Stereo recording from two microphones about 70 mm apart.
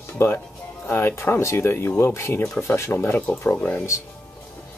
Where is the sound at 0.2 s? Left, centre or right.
Left.